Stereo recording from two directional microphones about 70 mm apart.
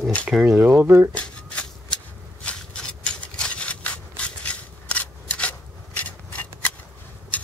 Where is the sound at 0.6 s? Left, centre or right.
Right.